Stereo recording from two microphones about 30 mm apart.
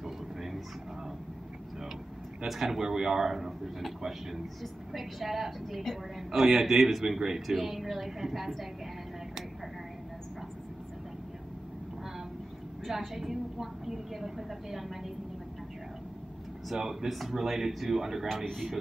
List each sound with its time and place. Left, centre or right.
0.0 s vehicle: centre
2.4 s a woman's voice: centre
2.8 s a woman's voice: centre
4.9 s a woman's voice: centre
7.2 s speech: right
7.4 s a woman's voice: centre
13.1 s a woman's voice: centre
16.6 s a woman's voice: centre